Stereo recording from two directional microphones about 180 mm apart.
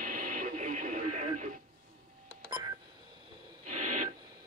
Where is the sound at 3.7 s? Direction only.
45° right (ahead or behind).